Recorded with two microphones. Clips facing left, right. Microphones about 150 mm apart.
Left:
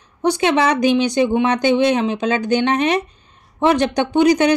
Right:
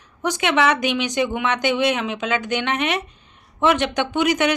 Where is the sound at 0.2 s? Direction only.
35° left (ahead or behind).